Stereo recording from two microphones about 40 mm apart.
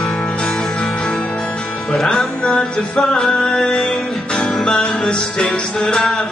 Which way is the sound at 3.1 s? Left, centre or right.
Centre.